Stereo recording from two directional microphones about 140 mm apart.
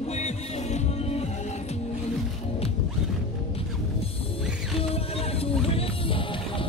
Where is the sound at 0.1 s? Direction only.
55° left (ahead or behind).